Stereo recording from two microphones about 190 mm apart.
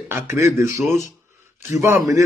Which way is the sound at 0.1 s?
15° right (ahead or behind).